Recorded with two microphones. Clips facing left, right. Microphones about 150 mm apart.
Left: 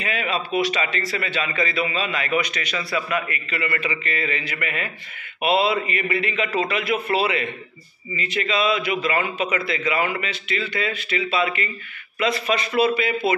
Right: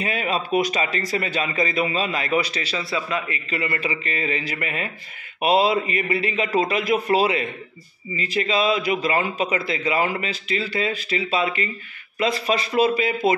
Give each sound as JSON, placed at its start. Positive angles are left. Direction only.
{"t": 0.0, "sound": "a man's voice", "side_deg": -40}